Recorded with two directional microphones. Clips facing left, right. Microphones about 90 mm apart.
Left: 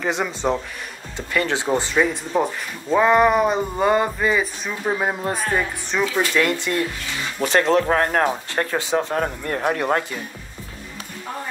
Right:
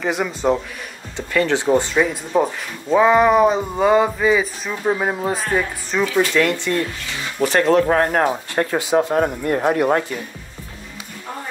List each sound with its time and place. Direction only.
0.0 s speech: centre (ahead or behind)
1.3 s speech: 10° left (ahead or behind)
1.7 s speech: 5° right (ahead or behind)
7.4 s speech: 20° left (ahead or behind)
7.9 s speech: 30° right (ahead or behind)